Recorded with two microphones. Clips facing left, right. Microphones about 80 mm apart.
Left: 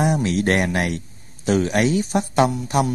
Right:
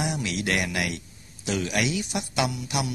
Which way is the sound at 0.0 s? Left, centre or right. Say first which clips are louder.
Left 9 dB; left.